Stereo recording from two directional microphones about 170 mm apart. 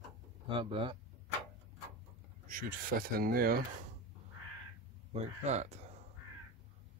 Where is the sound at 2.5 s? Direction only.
55° right (ahead or behind).